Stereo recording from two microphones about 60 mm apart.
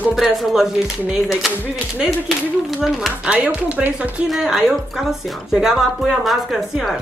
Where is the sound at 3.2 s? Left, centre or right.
Right.